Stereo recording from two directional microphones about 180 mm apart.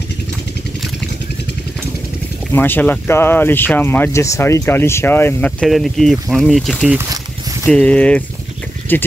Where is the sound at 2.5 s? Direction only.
10° left (ahead or behind).